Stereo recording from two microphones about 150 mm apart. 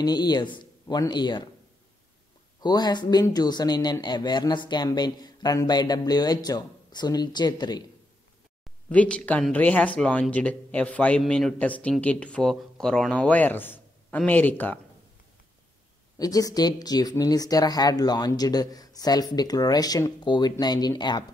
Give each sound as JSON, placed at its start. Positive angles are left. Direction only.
{"t": 0.0, "sound": "speech", "side_deg": 30}
{"t": 2.6, "sound": "speech", "side_deg": 30}
{"t": 8.8, "sound": "speech", "side_deg": 10}
{"t": 16.2, "sound": "speech", "side_deg": 25}